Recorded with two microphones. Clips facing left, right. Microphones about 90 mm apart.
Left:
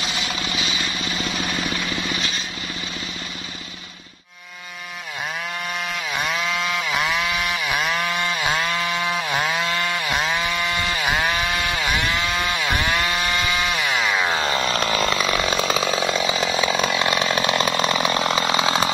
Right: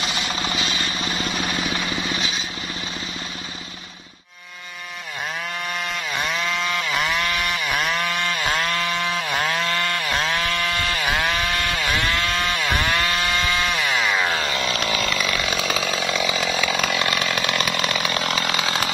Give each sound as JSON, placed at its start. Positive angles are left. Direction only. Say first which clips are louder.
{"t": 0.0, "sound": "vehicle", "louder": "right 1 dB", "side_deg": 0}
{"t": 2.0, "sound": "vehicle", "louder": "even", "side_deg": 0}
{"t": 6.1, "sound": "chainsaw", "louder": "left 1 dB", "side_deg": 0}
{"t": 14.4, "sound": "chainsaw", "louder": "left 3 dB", "side_deg": 35}
{"t": 15.3, "sound": "chainsaw", "louder": "left 3 dB", "side_deg": 25}